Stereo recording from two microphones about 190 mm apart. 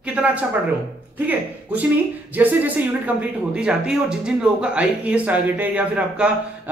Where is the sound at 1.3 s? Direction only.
10° right (ahead or behind).